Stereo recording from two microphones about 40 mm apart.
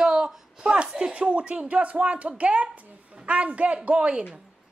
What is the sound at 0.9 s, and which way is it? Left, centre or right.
Speech, centre.